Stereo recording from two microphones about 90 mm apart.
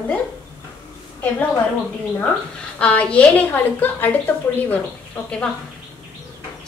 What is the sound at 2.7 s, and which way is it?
A woman's voice, 15° left (ahead or behind).